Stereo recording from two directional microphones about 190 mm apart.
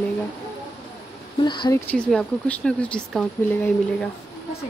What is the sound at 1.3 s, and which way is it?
Speech, 25° left (ahead or behind).